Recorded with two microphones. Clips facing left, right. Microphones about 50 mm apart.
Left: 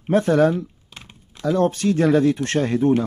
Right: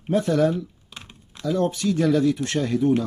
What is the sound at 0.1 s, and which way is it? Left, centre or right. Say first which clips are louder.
Speech: left 4 dB; left.